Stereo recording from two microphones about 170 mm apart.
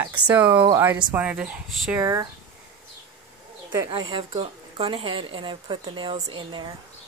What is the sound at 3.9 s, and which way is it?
A woman's voice, 30° right (ahead or behind).